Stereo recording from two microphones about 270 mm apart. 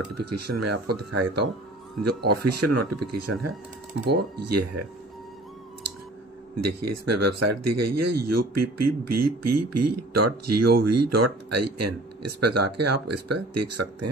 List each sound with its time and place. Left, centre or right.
0.0 s speech: right
4.4 s speech: right
6.5 s speech: right